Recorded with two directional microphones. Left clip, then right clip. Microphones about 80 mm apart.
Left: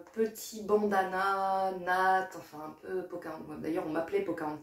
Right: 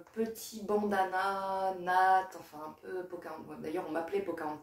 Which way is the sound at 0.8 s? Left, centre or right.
Right.